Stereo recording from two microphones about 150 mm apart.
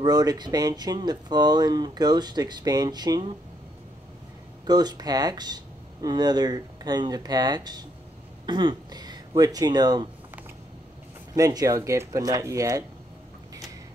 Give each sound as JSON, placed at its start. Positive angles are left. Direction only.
{"t": 0.0, "sound": "speech", "side_deg": -25}
{"t": 4.6, "sound": "speech", "side_deg": -25}
{"t": 11.3, "sound": "speech", "side_deg": -25}